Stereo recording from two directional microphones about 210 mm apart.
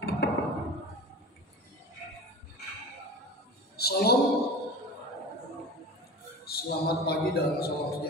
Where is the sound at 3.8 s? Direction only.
50° left (ahead or behind).